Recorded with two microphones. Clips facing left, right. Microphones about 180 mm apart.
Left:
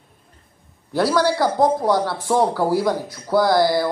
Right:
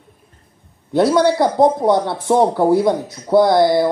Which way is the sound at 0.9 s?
20° right (ahead or behind).